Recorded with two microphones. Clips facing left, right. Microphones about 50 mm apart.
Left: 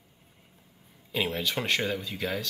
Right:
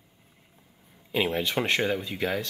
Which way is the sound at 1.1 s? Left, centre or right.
Right.